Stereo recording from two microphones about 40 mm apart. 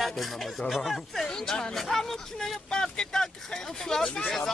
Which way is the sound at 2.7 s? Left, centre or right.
Centre.